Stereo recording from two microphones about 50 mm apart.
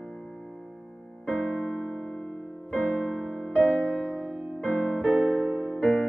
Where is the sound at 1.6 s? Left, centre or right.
Centre.